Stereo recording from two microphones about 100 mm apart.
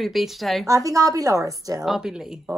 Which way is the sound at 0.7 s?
35° right (ahead or behind).